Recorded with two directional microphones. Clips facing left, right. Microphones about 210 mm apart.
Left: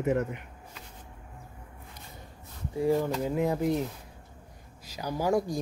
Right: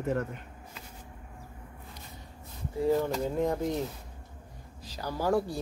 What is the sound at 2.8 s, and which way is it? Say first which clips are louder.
Speech: left 1 dB; 10° left (ahead or behind).